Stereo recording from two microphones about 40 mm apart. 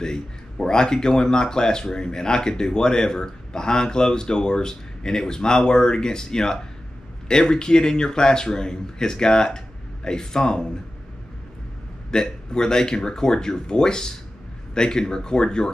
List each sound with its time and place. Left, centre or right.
0.0 s a man's voice: centre
12.1 s a man's voice: centre